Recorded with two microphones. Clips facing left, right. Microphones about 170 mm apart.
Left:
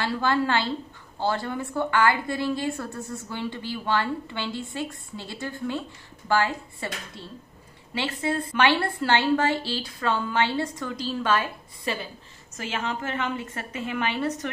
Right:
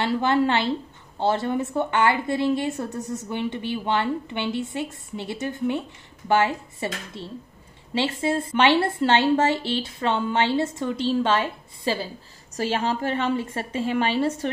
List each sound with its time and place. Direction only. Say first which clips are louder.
0.0 s a woman's voice: right 4 dB; 20° right (ahead or behind)